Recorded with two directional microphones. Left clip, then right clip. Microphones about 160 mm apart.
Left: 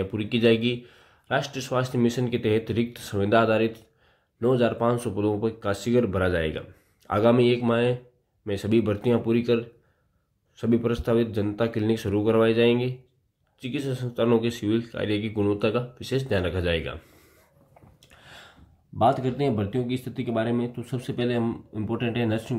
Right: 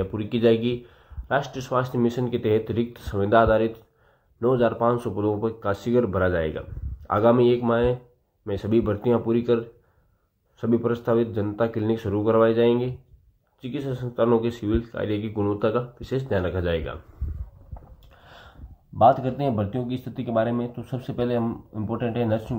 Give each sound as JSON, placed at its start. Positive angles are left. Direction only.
{"t": 0.0, "sound": "speech", "side_deg": 25}
{"t": 18.1, "sound": "speech", "side_deg": 10}